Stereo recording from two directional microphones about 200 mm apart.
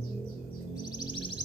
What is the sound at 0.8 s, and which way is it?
Music, 20° left (ahead or behind).